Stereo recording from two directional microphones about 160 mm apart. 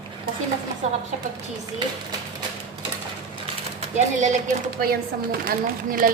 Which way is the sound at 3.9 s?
50° right (ahead or behind).